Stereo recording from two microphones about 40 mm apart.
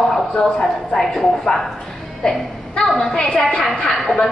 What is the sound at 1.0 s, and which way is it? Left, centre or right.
Speech, centre.